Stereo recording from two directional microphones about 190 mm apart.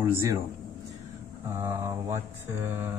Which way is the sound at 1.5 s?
15° right (ahead or behind).